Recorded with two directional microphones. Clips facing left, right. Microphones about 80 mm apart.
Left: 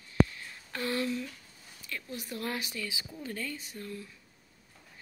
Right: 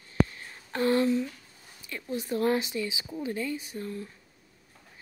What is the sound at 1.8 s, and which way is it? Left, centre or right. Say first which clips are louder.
Speech: right 7 dB; right.